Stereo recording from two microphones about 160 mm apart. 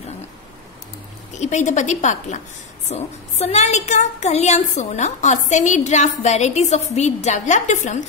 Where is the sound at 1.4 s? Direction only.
45° left (ahead or behind).